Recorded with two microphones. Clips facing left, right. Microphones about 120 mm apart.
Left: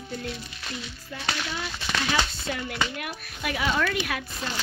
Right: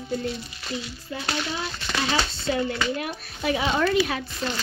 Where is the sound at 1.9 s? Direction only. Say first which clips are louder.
Right 1 dB; 10° left (ahead or behind).